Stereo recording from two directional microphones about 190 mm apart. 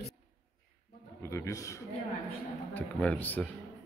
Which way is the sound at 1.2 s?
15° left (ahead or behind).